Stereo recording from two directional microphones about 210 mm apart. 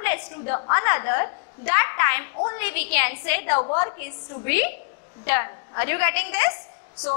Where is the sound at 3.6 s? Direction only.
25° left (ahead or behind).